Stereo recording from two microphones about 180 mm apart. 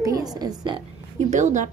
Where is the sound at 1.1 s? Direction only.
40° right (ahead or behind).